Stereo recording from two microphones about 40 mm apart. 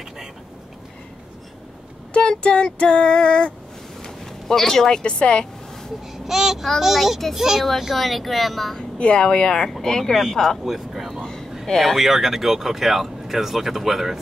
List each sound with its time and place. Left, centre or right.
2.1 s female singing: left
4.0 s a sound: centre
5.0 s female singing: left
6.2 s speech: centre
8.9 s female singing: left
10.3 s speech: centre
10.6 s speech: centre